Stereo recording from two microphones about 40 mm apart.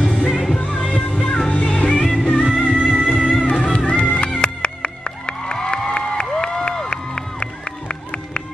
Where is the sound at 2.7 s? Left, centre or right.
Centre.